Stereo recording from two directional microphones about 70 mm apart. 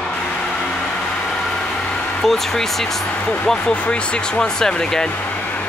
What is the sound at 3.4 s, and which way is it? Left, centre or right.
Speech, centre.